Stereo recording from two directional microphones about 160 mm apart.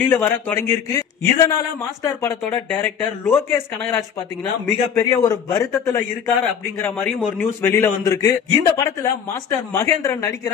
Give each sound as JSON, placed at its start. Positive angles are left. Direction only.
{"t": 0.0, "sound": "a man's voice", "side_deg": 10}